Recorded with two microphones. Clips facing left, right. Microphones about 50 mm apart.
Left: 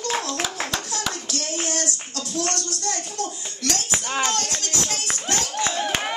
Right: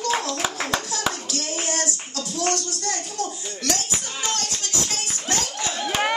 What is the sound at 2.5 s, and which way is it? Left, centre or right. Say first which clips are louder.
Clapping: right 1 dB; left.